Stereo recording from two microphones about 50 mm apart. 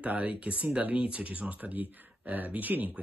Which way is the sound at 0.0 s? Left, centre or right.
Right.